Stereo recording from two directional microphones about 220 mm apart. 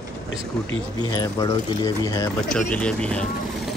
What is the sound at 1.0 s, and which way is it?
Speech, 15° left (ahead or behind).